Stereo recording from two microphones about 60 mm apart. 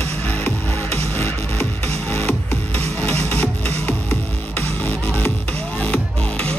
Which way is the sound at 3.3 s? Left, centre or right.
Left.